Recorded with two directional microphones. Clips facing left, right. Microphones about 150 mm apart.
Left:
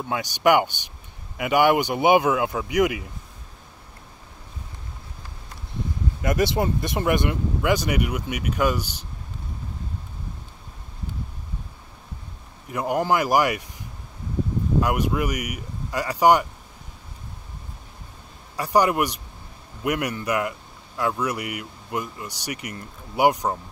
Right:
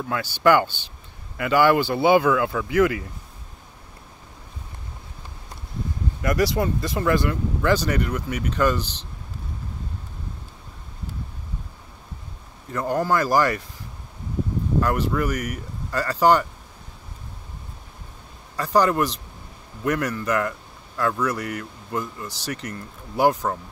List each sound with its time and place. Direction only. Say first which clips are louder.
0.0 s a man's voice: right 1 dB; 15° left (ahead or behind)
6.2 s a man's voice: even; 25° left (ahead or behind)
12.6 s a man's voice: even; 15° left (ahead or behind)
14.8 s a man's voice: right 1 dB; 15° left (ahead or behind)
18.6 s a man's voice: even; 15° left (ahead or behind)